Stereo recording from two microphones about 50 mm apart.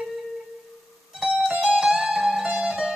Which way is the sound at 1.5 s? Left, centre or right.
Centre.